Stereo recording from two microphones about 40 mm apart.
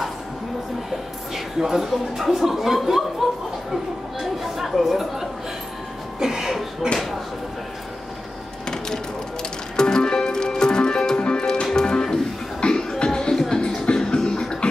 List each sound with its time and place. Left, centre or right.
1.3 s speech: centre
4.2 s chatter: centre
6.1 s music: centre
8.6 s music: centre
13.0 s a sound: centre
13.8 s music: centre